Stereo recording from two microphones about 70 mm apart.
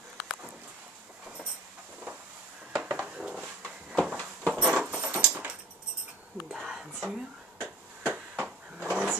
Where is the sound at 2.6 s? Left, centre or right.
Centre.